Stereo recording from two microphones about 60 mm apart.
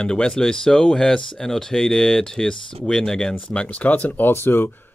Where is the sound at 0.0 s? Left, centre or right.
Centre.